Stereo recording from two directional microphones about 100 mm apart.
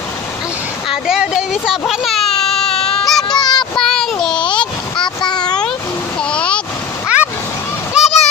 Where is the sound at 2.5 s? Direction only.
5° left (ahead or behind).